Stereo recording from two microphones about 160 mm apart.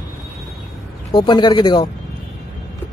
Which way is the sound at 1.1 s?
30° left (ahead or behind).